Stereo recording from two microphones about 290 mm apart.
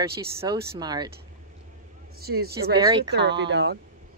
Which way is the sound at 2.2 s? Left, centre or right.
Right.